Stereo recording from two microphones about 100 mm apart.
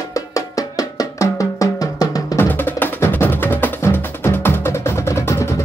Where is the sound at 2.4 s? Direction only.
20° left (ahead or behind).